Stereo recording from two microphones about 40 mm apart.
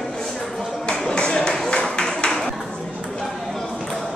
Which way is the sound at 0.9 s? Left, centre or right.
Left.